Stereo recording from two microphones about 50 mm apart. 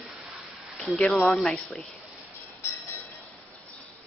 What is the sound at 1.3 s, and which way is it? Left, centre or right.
Speech, centre.